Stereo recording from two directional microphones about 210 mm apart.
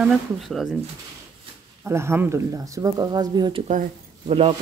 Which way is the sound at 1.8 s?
10° right (ahead or behind).